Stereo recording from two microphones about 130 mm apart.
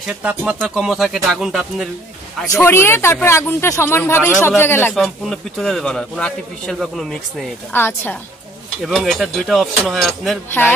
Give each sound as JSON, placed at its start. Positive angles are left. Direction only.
{"t": 0.0, "sound": "a man's voice", "side_deg": -10}
{"t": 2.6, "sound": "speech", "side_deg": 20}
{"t": 4.9, "sound": "a man's voice", "side_deg": 0}
{"t": 7.7, "sound": "speech", "side_deg": 15}
{"t": 8.8, "sound": "a man's voice", "side_deg": 0}